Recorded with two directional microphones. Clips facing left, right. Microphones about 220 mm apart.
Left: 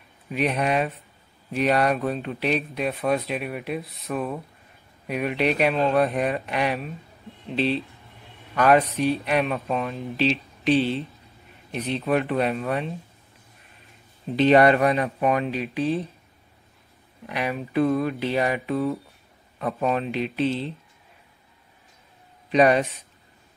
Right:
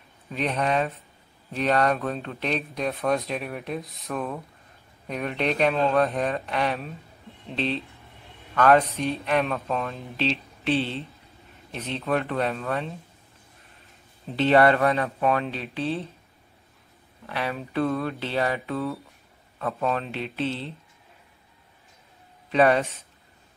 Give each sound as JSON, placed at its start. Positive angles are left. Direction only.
{"t": 0.3, "sound": "speech", "side_deg": 10}
{"t": 14.3, "sound": "speech", "side_deg": 15}
{"t": 17.3, "sound": "speech", "side_deg": 15}
{"t": 22.5, "sound": "speech", "side_deg": 15}